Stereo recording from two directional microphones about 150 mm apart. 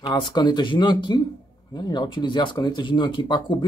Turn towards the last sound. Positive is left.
turn(degrees=30)  # may be behind; listen again after turning